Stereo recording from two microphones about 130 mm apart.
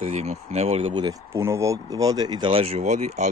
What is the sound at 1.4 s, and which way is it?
Speech, 20° right (ahead or behind).